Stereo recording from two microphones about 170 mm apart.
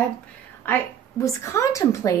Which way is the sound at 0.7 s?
15° left (ahead or behind).